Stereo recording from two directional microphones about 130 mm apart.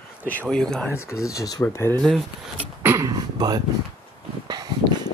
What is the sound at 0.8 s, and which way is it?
Speech, 20° left (ahead or behind).